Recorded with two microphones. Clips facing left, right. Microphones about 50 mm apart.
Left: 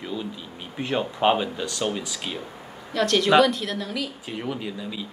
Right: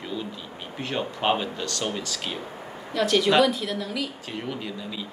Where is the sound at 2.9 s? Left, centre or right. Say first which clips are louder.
Left 2 dB; centre.